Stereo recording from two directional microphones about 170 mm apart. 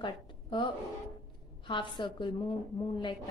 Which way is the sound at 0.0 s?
30° left (ahead or behind).